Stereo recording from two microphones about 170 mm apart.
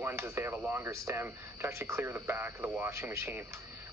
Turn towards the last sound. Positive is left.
turn(degrees=-15)  # may be behind; listen again after turning